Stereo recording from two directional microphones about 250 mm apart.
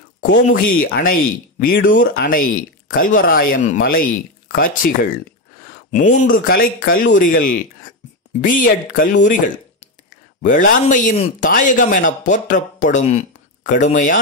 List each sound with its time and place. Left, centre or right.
0.3 s speech: left
10.4 s speech: left